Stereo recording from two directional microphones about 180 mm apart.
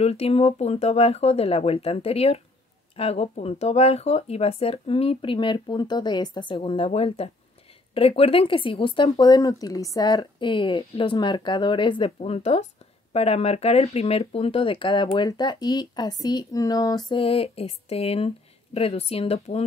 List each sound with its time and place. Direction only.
0.0 s speech: 35° left (ahead or behind)